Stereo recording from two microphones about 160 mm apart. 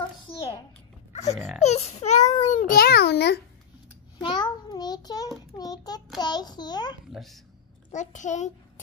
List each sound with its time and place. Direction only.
1.1 s a child's voice: 45° left (ahead or behind)
2.7 s a child's voice: 80° left
4.2 s child singing: 30° left (ahead or behind)
5.6 s a child's voice: 25° left (ahead or behind)
7.1 s speech: centre (ahead or behind)
7.9 s a child's voice: 50° left (ahead or behind)